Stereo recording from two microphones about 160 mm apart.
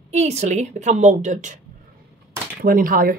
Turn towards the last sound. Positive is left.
turn(degrees=-60)  # may be behind; listen again after turning